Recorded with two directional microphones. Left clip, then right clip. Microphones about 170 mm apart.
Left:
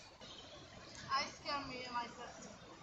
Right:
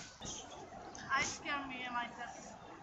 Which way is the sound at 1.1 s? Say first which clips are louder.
Right 3 dB; 10° left (ahead or behind).